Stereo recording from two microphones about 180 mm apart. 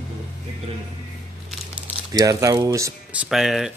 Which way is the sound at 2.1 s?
20° right (ahead or behind).